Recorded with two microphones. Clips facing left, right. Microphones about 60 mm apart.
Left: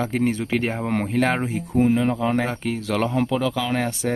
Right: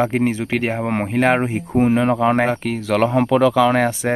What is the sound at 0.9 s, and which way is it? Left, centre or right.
Speech, right.